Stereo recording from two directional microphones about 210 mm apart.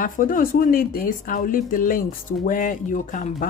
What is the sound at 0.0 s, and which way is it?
Speech, 40° left (ahead or behind).